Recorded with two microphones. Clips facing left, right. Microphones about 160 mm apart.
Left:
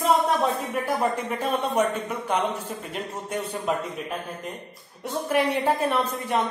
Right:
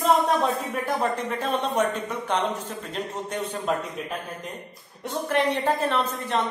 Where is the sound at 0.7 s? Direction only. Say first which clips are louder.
Left 1 dB; 10° left (ahead or behind).